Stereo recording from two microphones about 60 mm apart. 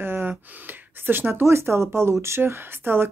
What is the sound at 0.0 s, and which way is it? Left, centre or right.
Gasp, right.